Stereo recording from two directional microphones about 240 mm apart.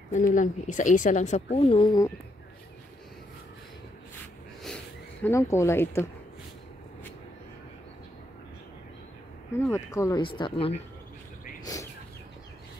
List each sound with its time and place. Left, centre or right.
0.1 s a woman's voice: left; by 2.1 s centre
5.2 s speech: centre
9.9 s a woman's voice: centre
11.6 s bird: centre